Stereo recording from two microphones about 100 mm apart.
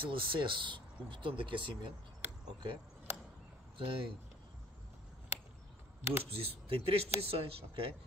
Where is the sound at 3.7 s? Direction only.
60° right (ahead or behind).